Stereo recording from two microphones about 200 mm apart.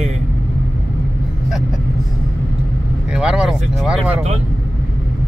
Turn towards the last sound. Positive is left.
turn(degrees=-5)  # may be behind; listen again after turning